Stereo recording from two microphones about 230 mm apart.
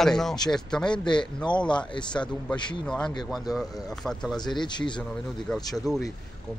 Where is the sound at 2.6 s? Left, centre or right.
Centre.